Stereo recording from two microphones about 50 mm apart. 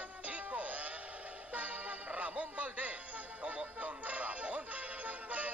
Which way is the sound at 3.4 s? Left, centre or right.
Right.